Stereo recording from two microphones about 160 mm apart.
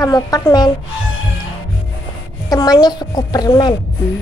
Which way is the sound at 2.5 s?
25° left (ahead or behind).